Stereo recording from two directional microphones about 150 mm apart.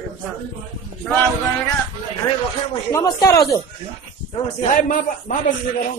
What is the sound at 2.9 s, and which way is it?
Speech, 25° left (ahead or behind).